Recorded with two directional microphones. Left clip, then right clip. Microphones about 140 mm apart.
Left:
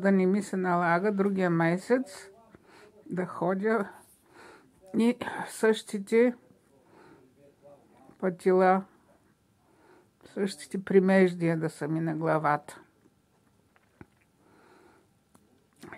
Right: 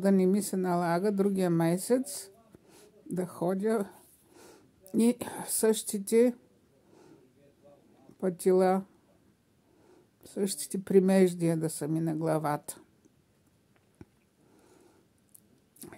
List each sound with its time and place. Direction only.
0.0 s speech: 40° right (ahead or behind)
8.2 s speech: 40° right (ahead or behind)
9.8 s speech: 40° right (ahead or behind)
14.0 s a sound: 40° right (ahead or behind)